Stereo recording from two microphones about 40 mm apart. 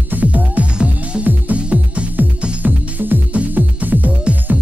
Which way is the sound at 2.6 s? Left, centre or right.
Right.